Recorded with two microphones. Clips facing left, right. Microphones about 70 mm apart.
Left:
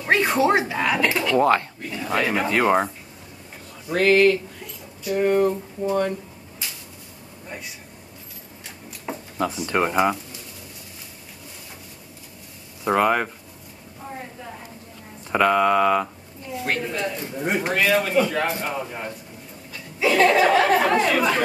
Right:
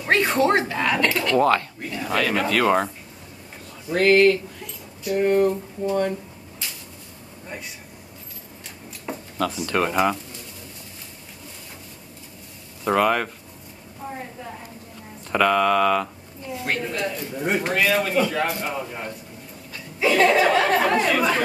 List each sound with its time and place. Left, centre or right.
0.0 s speech: centre
3.9 s speech: centre
7.4 s speech: centre
9.1 s a sound: centre
9.7 s speech: centre
12.8 s speech: centre
14.0 s a sound: centre
15.3 s speech: centre
16.5 s speech: centre